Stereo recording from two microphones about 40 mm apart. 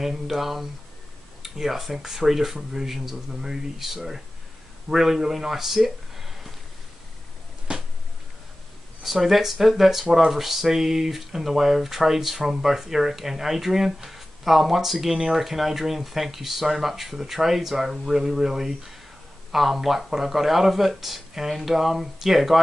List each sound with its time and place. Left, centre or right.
0.0 s speech: centre
7.7 s a sound: right
9.0 s speech: centre